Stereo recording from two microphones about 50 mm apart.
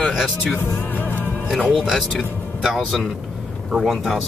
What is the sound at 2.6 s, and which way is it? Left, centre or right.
Speech, centre.